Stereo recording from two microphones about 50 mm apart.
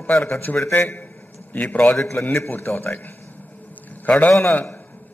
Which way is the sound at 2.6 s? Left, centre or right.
Left.